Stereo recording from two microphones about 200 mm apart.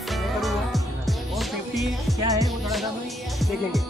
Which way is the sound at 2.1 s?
15° right (ahead or behind).